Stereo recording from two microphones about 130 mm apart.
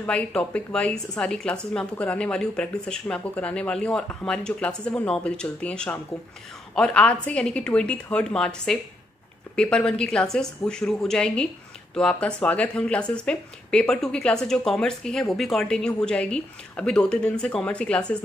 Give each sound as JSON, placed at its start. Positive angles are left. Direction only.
{"t": 0.0, "sound": "speech", "side_deg": 10}